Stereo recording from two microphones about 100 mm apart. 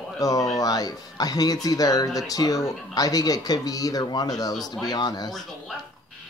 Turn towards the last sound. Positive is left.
turn(degrees=45)  # may be behind; listen again after turning